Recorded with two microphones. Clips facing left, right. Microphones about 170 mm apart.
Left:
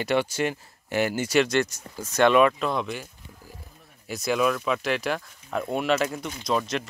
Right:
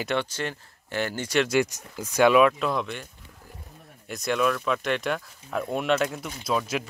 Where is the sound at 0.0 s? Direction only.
5° left (ahead or behind).